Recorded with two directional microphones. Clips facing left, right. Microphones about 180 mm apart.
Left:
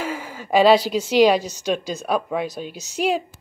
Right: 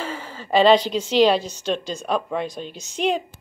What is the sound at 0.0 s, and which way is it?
A woman's voice, 10° left (ahead or behind).